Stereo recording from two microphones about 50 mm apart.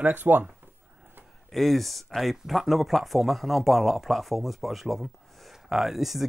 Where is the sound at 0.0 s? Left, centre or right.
Right.